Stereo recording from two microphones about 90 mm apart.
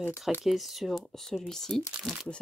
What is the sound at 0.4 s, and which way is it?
Speech, centre (ahead or behind).